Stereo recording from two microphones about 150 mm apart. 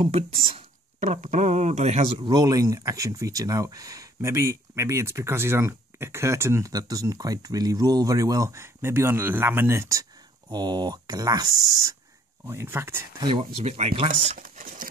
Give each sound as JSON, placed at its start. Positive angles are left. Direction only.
{"t": 0.0, "sound": "speech", "side_deg": -40}
{"t": 1.0, "sound": "speech", "side_deg": -55}
{"t": 2.2, "sound": "speech", "side_deg": -25}
{"t": 12.4, "sound": "speech", "side_deg": -15}
{"t": 13.2, "sound": "speech", "side_deg": -30}
{"t": 13.6, "sound": "speech", "side_deg": -45}
{"t": 14.3, "sound": "speech", "side_deg": -60}